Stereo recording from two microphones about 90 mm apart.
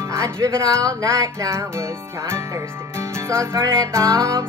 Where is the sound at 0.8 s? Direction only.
40° right (ahead or behind).